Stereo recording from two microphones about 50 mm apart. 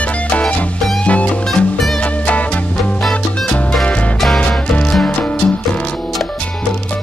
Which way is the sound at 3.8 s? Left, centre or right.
Left.